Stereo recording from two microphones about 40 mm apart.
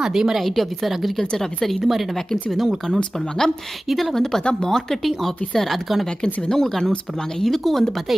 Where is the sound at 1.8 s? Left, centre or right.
Centre.